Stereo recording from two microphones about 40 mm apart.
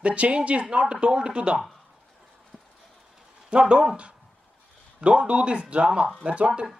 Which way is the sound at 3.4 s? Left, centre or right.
Right.